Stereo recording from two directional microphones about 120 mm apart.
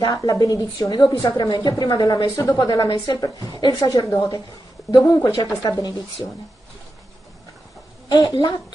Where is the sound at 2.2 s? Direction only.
20° left (ahead or behind).